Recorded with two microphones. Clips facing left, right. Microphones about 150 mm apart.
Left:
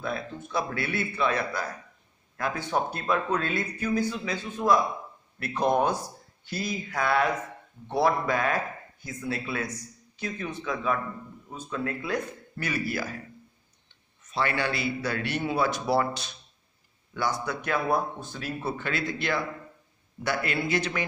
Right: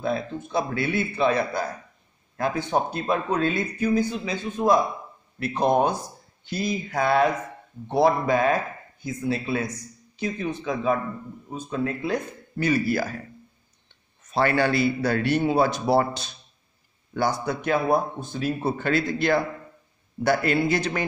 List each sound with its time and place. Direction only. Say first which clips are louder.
0.0 s speech: right 6 dB; 25° right (ahead or behind); by 13.2 s 40° right (ahead or behind)
14.3 s a man's voice: right 7 dB; 45° right (ahead or behind); by 18.5 s 20° right (ahead or behind)
18.8 s a man's voice: right 7 dB; 40° right (ahead or behind)